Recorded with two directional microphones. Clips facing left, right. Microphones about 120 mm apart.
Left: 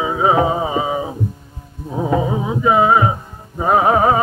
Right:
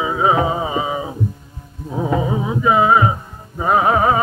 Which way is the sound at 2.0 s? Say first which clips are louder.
Left 1 dB; 25° left (ahead or behind).